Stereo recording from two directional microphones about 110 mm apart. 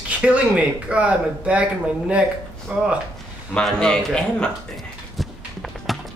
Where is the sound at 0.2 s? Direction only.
10° right (ahead or behind).